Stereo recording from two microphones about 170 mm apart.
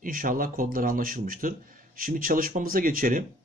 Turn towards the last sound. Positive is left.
turn(degrees=-55)  # may be behind; listen again after turning